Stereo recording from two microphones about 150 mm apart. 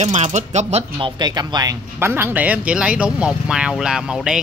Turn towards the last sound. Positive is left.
turn(degrees=-5)  # may be behind; listen again after turning